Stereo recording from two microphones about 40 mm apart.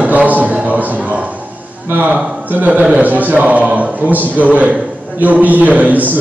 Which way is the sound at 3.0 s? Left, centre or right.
Right.